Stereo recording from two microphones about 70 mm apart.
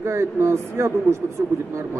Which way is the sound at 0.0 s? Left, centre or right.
Right.